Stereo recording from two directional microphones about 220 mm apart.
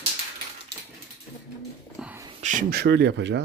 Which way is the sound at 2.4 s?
40° right (ahead or behind).